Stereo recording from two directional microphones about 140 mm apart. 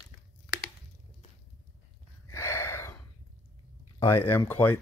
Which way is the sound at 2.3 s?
20° left (ahead or behind).